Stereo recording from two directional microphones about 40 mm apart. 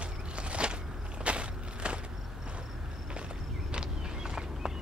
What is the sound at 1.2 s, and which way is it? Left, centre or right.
Vehicle, right.